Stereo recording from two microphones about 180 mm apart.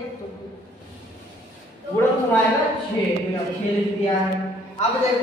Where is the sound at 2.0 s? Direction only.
10° left (ahead or behind).